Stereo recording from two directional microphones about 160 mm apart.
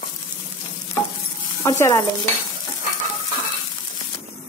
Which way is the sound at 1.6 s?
20° left (ahead or behind).